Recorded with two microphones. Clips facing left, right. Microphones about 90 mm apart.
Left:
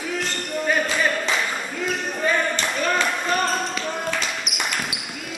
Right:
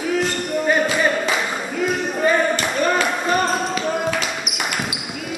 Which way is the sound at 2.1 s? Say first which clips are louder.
Right 5 dB; 20° right (ahead or behind).